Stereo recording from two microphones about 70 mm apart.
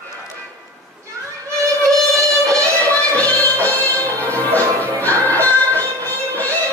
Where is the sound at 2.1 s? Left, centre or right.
Right.